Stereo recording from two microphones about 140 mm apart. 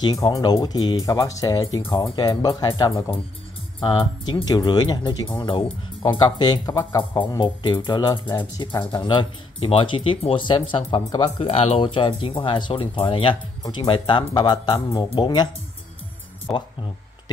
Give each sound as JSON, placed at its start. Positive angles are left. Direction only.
{"t": 0.0, "sound": "speech", "side_deg": 25}
{"t": 1.8, "sound": "speech", "side_deg": 35}
{"t": 4.5, "sound": "speech", "side_deg": 30}
{"t": 7.0, "sound": "speech", "side_deg": 35}